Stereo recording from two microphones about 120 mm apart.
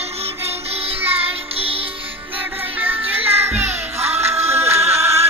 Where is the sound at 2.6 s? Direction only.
15° right (ahead or behind).